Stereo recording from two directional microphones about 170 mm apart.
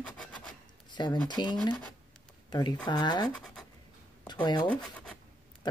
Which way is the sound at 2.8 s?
25° left (ahead or behind).